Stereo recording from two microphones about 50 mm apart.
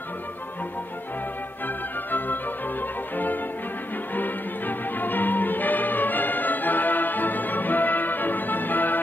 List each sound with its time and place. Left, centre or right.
2.0 s music: left